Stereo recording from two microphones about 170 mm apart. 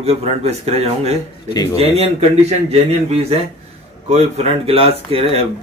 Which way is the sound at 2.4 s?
40° right (ahead or behind).